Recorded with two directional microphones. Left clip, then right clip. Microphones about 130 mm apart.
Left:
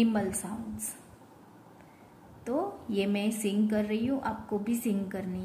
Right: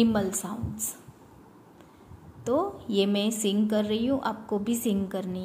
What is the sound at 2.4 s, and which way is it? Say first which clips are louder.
A woman's voice: right 5 dB; 25° right (ahead or behind).